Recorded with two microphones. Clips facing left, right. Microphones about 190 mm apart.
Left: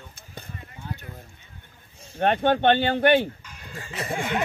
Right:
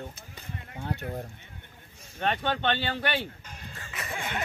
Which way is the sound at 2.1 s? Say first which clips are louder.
Left 8 dB; 50° left (ahead or behind).